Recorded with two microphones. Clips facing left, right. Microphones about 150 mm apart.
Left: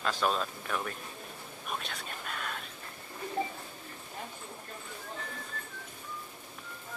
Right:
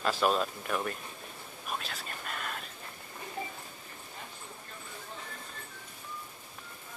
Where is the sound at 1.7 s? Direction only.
Centre (ahead or behind).